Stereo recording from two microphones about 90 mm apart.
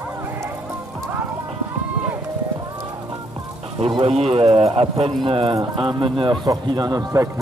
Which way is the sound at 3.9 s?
90° right.